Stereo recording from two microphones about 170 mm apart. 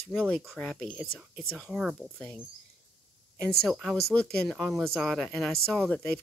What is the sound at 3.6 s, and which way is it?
Speech, centre (ahead or behind).